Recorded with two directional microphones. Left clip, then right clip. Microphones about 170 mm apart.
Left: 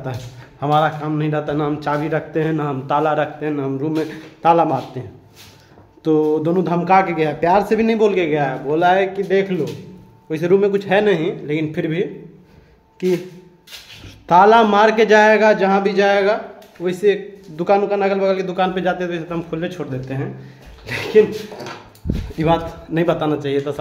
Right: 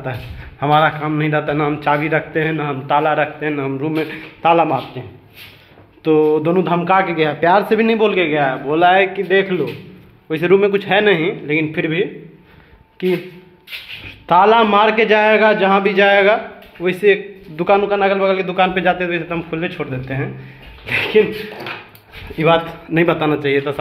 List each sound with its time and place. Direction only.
0.6 s a man's voice: 5° right (ahead or behind)
2.3 s a man's voice: 25° left (ahead or behind)
6.2 s a man's voice: 5° left (ahead or behind)
15.8 s a man's voice: centre (ahead or behind)
17.6 s speech: 15° left (ahead or behind)
22.4 s a man's voice: 5° left (ahead or behind)